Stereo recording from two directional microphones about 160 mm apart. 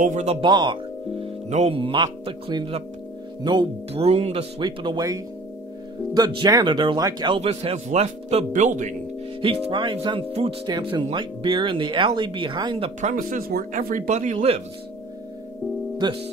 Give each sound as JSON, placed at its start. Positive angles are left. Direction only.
{"t": 0.0, "sound": "speech", "side_deg": -45}
{"t": 0.4, "sound": "speech", "side_deg": -30}
{"t": 1.2, "sound": "speech", "side_deg": -40}
{"t": 9.4, "sound": "speech", "side_deg": -30}
{"t": 13.1, "sound": "speech", "side_deg": -60}
{"t": 16.0, "sound": "speech", "side_deg": -30}